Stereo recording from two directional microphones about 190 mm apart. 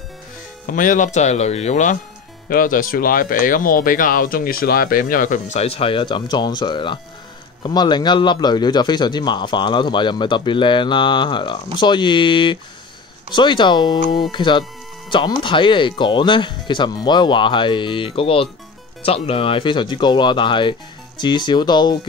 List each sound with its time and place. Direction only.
0.7 s a man's voice: 45° left (ahead or behind); by 21.9 s 25° left (ahead or behind)